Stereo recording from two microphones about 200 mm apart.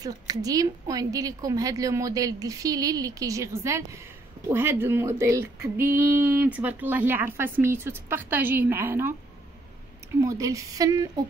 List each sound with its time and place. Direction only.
0.0 s a woman's voice: 20° right (ahead or behind)
10.2 s a woman's voice: 15° right (ahead or behind)